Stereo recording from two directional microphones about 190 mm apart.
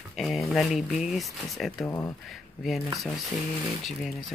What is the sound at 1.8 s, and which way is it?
Speech, 15° left (ahead or behind).